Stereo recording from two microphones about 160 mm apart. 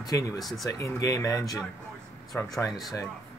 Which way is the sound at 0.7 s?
20° left (ahead or behind).